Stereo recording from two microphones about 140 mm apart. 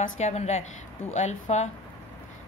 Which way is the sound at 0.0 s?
50° left (ahead or behind).